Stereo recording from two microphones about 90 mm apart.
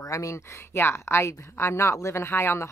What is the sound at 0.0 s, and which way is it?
A woman's voice, 35° left (ahead or behind).